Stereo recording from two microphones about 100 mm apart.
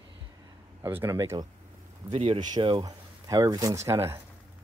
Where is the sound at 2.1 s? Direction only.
90° right.